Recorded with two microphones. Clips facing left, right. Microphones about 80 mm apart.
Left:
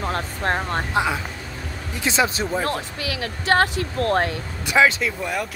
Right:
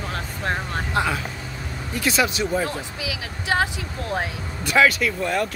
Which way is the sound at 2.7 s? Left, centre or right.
Left.